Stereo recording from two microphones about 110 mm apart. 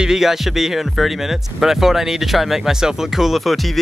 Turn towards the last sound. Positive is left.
turn(degrees=0)  # may be behind; listen again after turning